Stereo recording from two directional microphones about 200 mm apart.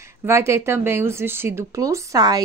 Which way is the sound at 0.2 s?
15° right (ahead or behind).